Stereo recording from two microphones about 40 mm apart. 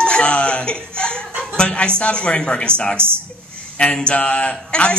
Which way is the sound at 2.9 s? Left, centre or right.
Right.